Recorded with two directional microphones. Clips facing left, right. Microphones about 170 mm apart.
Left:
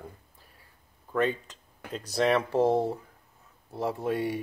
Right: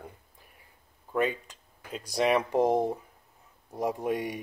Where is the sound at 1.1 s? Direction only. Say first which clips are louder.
Left 1 dB; 10° right (ahead or behind).